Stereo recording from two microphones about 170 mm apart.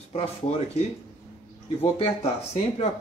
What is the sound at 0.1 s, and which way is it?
Speech, 35° left (ahead or behind).